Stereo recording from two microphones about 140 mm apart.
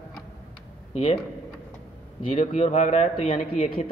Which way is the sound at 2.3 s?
55° left (ahead or behind).